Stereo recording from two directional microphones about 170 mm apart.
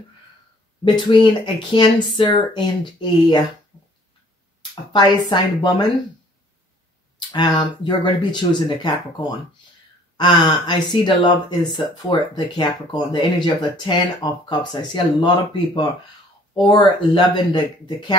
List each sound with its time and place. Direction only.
0.8 s speech: 30° left (ahead or behind)
4.9 s speech: 25° left (ahead or behind)
7.2 s speech: 25° left (ahead or behind)
10.1 s speech: 30° left (ahead or behind)